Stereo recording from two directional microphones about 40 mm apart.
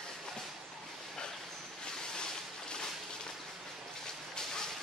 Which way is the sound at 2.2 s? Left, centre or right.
Left.